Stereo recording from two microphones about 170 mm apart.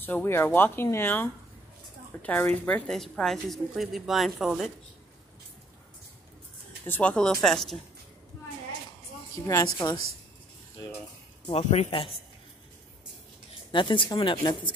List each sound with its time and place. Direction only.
0.0 s a woman's voice: 10° left (ahead or behind)
6.9 s a woman's voice: 10° left (ahead or behind)
9.5 s speech: 20° left (ahead or behind)
11.4 s speech: 40° left (ahead or behind)
13.7 s speech: 30° left (ahead or behind)